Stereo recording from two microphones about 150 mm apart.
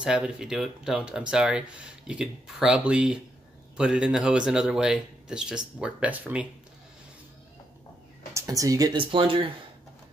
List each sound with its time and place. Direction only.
0.0 s speech: 5° right (ahead or behind)
8.3 s speech: 20° right (ahead or behind)
8.9 s speech: 35° right (ahead or behind)